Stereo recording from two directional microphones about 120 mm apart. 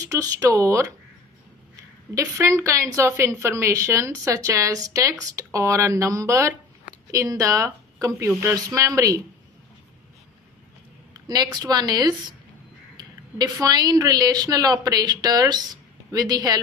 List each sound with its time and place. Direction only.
0.0 s a woman's voice: 30° right (ahead or behind)
2.1 s a woman's voice: 25° right (ahead or behind)
11.2 s a woman's voice: 35° right (ahead or behind)